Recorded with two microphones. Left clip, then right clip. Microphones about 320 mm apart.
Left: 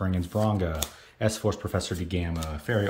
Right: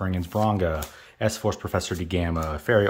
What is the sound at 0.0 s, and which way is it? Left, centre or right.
Speech, centre.